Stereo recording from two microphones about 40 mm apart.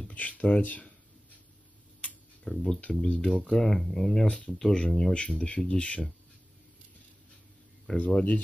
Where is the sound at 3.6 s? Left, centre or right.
Centre.